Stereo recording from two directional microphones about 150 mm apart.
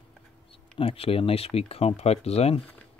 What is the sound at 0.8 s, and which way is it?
Speech, 40° left (ahead or behind).